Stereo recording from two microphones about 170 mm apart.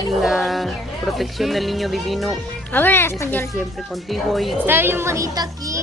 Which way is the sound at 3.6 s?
Centre (ahead or behind).